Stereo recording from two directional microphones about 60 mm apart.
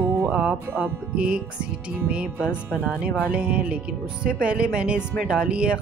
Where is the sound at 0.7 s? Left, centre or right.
Right.